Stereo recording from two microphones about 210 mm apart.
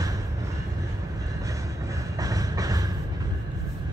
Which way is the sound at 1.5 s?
15° right (ahead or behind).